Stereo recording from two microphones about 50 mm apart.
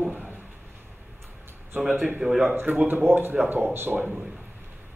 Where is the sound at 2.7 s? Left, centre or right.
Right.